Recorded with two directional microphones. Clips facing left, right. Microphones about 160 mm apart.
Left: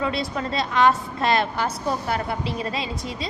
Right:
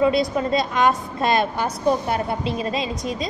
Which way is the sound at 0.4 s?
20° right (ahead or behind).